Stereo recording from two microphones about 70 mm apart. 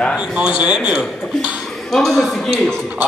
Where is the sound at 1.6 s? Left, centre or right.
Centre.